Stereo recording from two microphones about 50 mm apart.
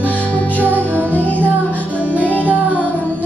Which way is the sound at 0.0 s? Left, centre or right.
Right.